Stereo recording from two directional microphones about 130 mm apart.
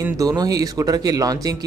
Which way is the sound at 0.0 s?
25° right (ahead or behind).